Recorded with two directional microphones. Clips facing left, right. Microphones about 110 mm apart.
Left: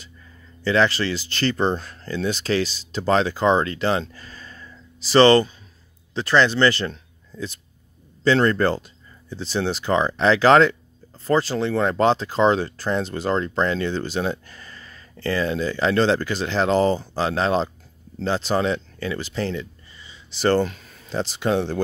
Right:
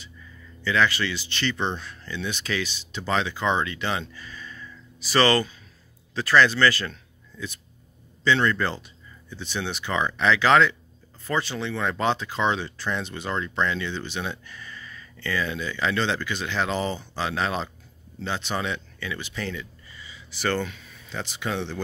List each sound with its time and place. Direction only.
0.6 s speech: 35° left (ahead or behind)
8.2 s speech: 40° left (ahead or behind)